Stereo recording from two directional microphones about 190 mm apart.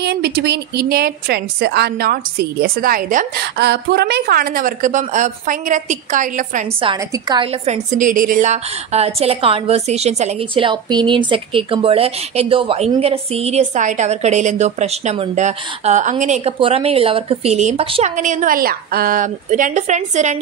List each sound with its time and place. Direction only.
0.0 s a woman's voice: 60° right (ahead or behind)
3.5 s a woman's voice: 60° right (ahead or behind); by 6.7 s 40° right (ahead or behind)
7.0 s a woman's voice: 20° right (ahead or behind)
18.1 s a woman's voice: 40° right (ahead or behind)